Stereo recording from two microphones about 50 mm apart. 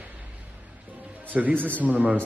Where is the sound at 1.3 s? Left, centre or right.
Right.